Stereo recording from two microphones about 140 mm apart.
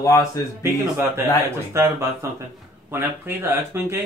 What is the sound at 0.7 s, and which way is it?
Speech, 20° right (ahead or behind).